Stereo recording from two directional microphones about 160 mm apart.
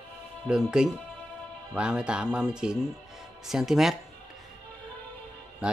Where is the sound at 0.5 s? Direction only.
5° right (ahead or behind).